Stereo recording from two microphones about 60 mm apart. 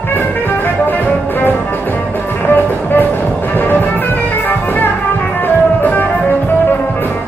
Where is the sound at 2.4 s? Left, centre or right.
Left.